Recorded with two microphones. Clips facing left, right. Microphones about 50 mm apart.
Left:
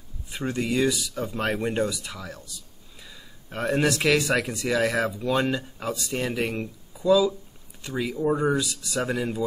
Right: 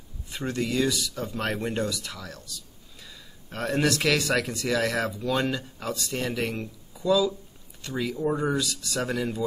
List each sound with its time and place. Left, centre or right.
0.3 s speech: centre
3.0 s a sound: centre
4.0 s speech: centre